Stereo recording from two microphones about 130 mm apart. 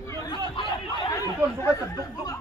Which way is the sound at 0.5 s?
40° left (ahead or behind).